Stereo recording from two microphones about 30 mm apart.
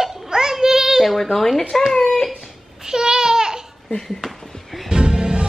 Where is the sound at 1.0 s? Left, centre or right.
Centre.